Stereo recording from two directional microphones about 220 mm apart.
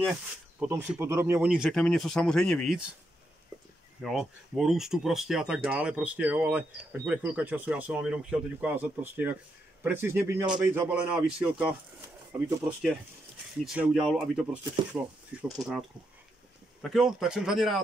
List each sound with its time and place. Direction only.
0.0 s speech: 5° right (ahead or behind)
4.0 s a man's voice: centre (ahead or behind)
16.9 s speech: 5° right (ahead or behind)